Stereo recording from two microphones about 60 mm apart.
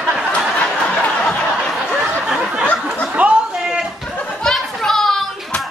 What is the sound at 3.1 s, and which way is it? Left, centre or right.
Chuckle, centre.